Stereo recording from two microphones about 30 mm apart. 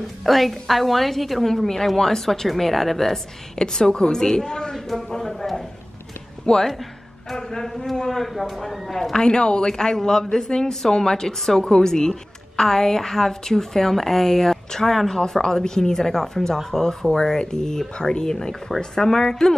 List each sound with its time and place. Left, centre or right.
0.0 s a woman's voice: centre
3.5 s a woman's voice: left
4.7 s a sound: centre
5.1 s a woman's voice: centre
6.7 s a sound: centre
7.3 s speech: centre
7.6 s a woman's voice: centre
9.1 s a woman's voice: left